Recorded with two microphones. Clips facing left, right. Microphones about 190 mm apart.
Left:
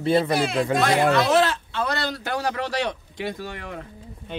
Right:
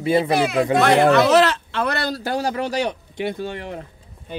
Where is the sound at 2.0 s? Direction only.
30° right (ahead or behind).